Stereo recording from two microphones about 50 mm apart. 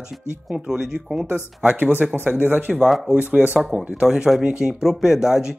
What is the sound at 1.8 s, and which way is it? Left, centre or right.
Speech, right.